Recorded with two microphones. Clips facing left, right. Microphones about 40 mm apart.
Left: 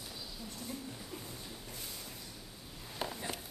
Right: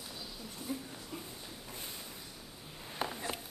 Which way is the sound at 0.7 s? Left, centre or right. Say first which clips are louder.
Right 6 dB; centre.